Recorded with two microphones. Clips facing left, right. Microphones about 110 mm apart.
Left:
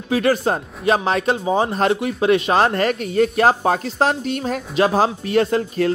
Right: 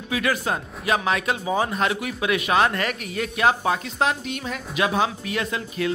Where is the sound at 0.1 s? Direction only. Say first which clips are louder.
Left 7 dB; 35° left (ahead or behind).